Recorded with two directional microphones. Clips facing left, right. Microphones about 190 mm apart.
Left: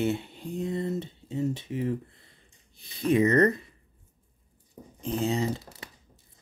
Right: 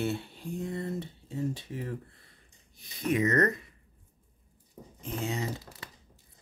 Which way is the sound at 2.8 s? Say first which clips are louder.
Left 5 dB; 30° left (ahead or behind).